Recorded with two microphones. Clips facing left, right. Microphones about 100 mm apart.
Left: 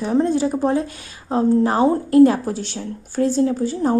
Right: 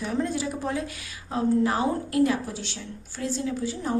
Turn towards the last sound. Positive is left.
turn(degrees=40)  # may be behind; listen again after turning